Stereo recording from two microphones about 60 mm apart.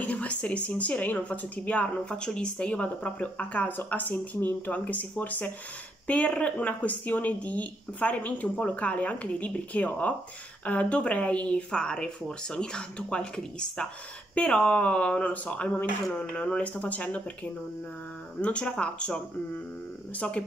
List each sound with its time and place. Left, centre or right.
0.0 s speech: left
18.4 s speech: centre